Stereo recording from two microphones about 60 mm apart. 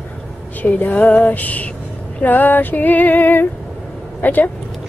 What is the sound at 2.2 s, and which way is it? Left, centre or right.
Female singing, left.